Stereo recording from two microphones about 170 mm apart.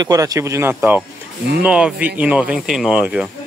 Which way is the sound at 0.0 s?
20° right (ahead or behind).